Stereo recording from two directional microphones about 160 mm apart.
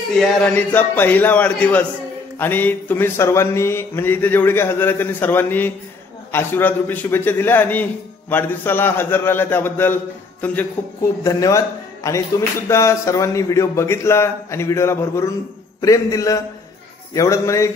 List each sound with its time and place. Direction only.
0.6 s a man's voice: 10° left (ahead or behind)
11.2 s a man's voice: 20° left (ahead or behind)